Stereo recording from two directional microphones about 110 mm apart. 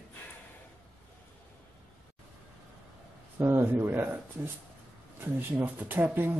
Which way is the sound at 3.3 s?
20° right (ahead or behind).